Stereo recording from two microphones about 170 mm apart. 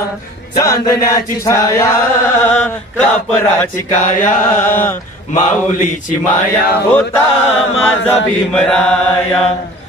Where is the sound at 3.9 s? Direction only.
50° left (ahead or behind).